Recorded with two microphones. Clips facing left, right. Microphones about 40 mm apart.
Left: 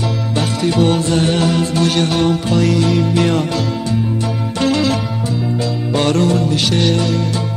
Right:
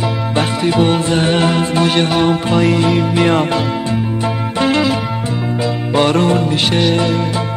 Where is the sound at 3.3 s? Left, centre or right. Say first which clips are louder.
Right 3 dB; right.